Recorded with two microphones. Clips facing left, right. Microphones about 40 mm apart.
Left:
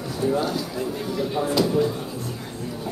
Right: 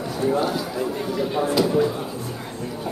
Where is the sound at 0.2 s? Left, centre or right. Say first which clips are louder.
Right 1 dB; centre.